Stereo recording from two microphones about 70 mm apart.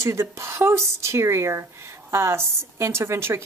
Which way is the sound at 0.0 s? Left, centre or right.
Right.